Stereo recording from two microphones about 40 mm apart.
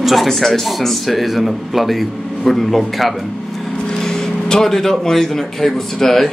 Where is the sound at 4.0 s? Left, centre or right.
Centre.